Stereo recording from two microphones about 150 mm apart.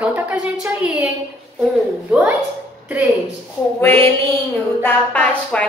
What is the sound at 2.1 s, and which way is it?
Speech, 10° right (ahead or behind).